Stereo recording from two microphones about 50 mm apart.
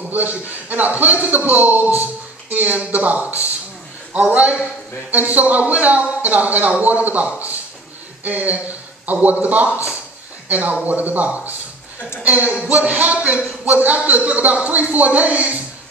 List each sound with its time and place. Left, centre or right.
0.1 s speech: right